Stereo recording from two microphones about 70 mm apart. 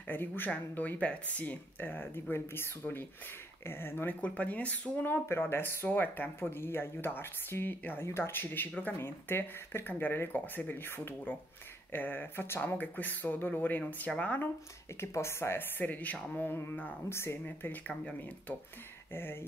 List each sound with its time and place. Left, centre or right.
0.1 s speech: left
15.0 s speech: left
15.8 s speech: left
17.1 s speech: left
17.5 s speech: left